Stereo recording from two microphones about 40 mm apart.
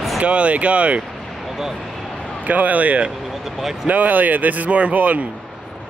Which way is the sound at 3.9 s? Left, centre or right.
Right.